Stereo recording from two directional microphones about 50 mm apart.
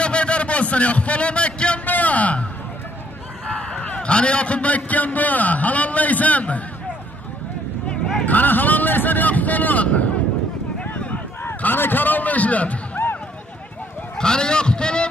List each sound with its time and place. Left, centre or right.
0.0 s a sound: left
3.5 s a man's voice: left
8.3 s a man's voice: left
10.9 s a sound: left
11.4 s a man's voice: left
14.1 s speech: centre